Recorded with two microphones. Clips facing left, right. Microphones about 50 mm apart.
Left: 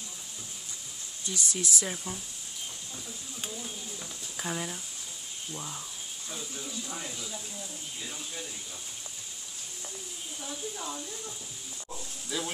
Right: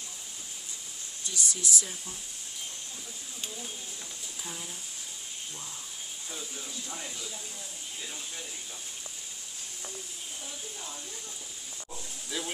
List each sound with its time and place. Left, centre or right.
1.3 s speech: left
4.4 s speech: left
5.5 s speech: left
6.3 s speech: centre
11.9 s snake: centre